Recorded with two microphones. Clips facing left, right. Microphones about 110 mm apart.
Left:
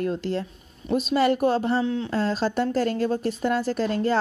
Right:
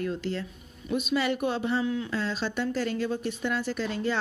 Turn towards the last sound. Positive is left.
turn(degrees=45)  # may be behind; listen again after turning